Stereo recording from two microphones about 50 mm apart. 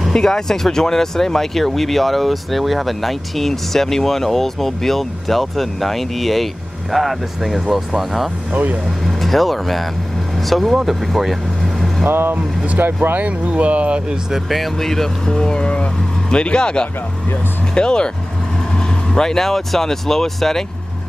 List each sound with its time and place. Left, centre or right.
0.1 s speech: centre
12.1 s speech: right
13.2 s speech: right
14.3 s speech: centre